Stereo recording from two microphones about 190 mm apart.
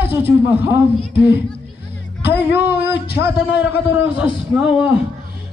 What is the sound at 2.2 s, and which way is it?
A man's voice, 10° right (ahead or behind).